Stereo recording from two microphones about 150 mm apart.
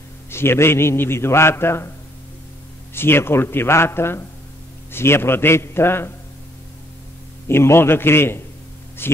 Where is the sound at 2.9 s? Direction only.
15° left (ahead or behind).